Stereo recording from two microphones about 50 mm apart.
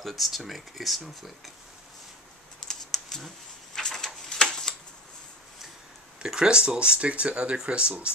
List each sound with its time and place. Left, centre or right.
0.0 s speech: centre
2.7 s computer keyboard: centre
3.7 s a sound: centre
6.2 s speech: centre